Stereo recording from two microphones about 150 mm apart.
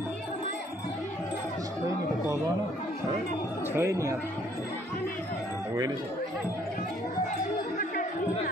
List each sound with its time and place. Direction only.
3.7 s speech: 20° right (ahead or behind)